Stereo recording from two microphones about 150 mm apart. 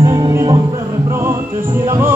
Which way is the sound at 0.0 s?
25° right (ahead or behind).